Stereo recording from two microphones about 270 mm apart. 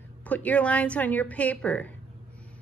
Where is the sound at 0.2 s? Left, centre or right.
Centre.